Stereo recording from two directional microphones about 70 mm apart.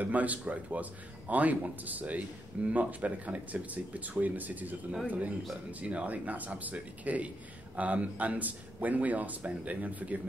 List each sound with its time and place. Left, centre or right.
0.0 s speech: right